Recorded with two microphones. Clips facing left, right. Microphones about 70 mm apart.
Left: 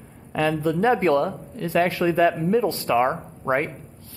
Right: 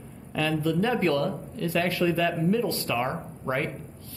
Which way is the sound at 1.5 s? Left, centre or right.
Left.